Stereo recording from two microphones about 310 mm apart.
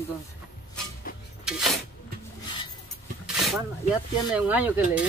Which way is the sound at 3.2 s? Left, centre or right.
Centre.